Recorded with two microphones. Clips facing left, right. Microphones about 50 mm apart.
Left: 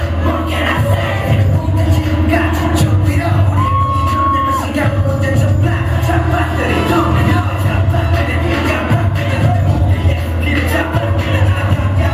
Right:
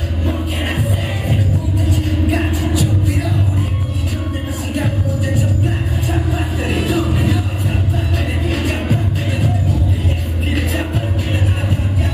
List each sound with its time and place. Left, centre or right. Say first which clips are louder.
0.3 s music: left 7 dB; left
2.3 s music: left 7 dB; left
6.0 s a sound: left 7 dB; left
8.5 s music: left 3 dB; left
10.5 s music: left 5 dB; left